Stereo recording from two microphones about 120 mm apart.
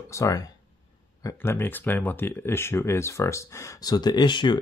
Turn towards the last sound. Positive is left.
turn(degrees=40)  # may be behind; listen again after turning